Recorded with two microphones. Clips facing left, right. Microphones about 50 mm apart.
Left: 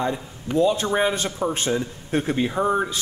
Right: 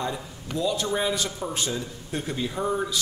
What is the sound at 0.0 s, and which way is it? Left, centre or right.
A man's voice, left.